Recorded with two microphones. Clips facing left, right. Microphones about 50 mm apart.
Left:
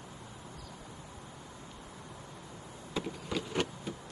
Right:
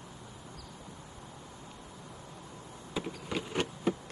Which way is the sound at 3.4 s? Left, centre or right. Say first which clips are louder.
Even; right.